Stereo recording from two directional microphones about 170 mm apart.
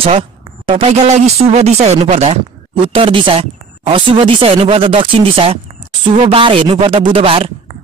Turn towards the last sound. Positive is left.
turn(degrees=-30)  # may be behind; listen again after turning